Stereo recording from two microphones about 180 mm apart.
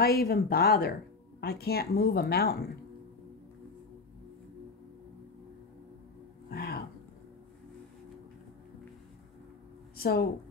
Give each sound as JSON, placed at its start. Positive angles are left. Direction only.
{"t": 0.0, "sound": "speech", "side_deg": 60}
{"t": 6.5, "sound": "roaring cats", "side_deg": 60}
{"t": 9.9, "sound": "speech", "side_deg": 60}